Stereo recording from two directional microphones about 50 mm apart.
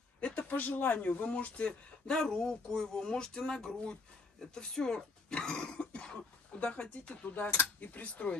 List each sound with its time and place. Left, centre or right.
0.4 s speech: left
7.2 s speech: left